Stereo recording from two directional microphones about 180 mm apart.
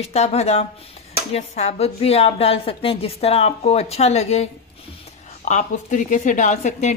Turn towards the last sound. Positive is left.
turn(degrees=40)  # may be behind; listen again after turning